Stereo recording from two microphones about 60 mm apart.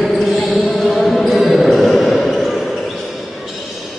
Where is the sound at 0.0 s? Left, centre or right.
Centre.